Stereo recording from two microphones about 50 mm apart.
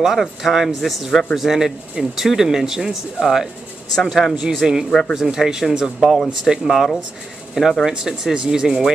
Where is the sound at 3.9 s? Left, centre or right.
Centre.